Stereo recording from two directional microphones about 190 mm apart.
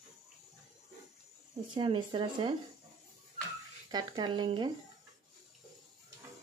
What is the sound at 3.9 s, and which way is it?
Speech, 25° right (ahead or behind).